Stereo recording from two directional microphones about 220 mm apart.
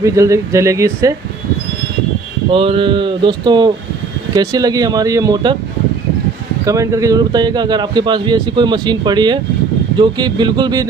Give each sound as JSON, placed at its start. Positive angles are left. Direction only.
{"t": 0.0, "sound": "speech", "side_deg": -15}
{"t": 2.5, "sound": "speech", "side_deg": -25}
{"t": 6.6, "sound": "speech", "side_deg": -15}